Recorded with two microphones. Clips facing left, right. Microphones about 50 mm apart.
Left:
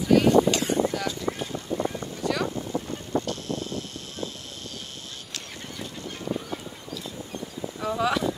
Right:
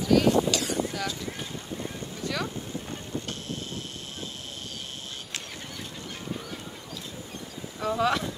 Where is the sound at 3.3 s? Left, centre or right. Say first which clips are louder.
Left 5 dB; right.